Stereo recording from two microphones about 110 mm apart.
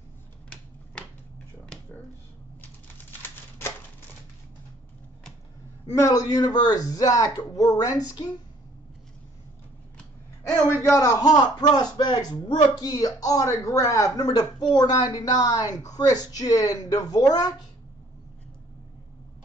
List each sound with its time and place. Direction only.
3.2 s typewriter: 20° left (ahead or behind)
5.9 s speech: 30° left (ahead or behind)
10.7 s a man's voice: 20° left (ahead or behind)
11.0 s speech: 35° left (ahead or behind)